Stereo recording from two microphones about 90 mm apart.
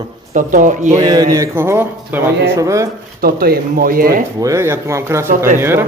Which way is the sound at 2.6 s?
35° right (ahead or behind).